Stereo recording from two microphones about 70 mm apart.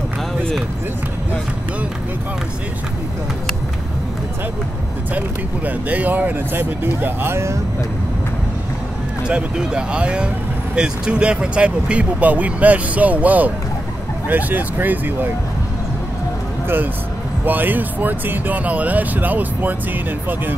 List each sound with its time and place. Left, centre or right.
5.7 s speech: right
9.3 s speech: centre; by 15.2 s right
17.5 s speech: right